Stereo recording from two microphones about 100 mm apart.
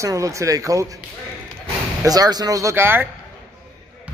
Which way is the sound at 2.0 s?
40° right (ahead or behind).